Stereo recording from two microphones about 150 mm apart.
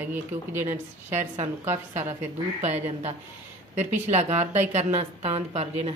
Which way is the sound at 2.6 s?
45° right (ahead or behind).